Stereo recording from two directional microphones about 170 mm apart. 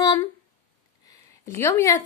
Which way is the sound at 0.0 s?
20° left (ahead or behind).